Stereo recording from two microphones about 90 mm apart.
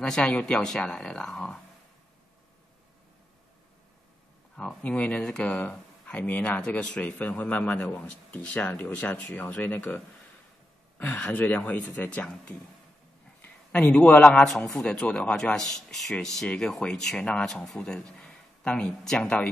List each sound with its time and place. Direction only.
0.0 s speech: 10° left (ahead or behind)
4.6 s a man's voice: 10° left (ahead or behind)